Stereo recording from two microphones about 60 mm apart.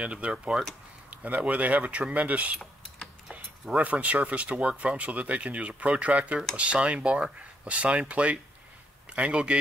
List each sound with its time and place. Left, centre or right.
0.0 s speech: centre
3.7 s speech: right